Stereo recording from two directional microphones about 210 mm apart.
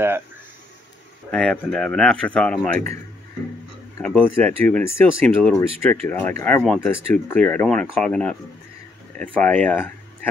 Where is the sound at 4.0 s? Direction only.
10° left (ahead or behind).